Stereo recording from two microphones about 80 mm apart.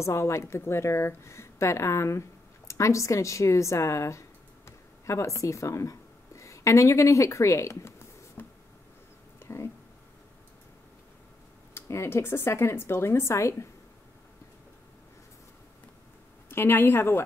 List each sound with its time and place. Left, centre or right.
0.0 s a woman's voice: left
8.4 s a sound: left
11.7 s a woman's voice: left
16.4 s a woman's voice: left